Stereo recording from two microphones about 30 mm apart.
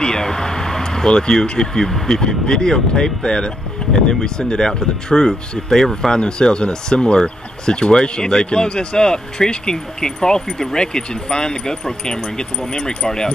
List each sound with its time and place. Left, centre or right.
0.0 s vehicle: left
1.6 s speech: left
1.9 s speech: centre
2.1 s speech: left
6.1 s speech: left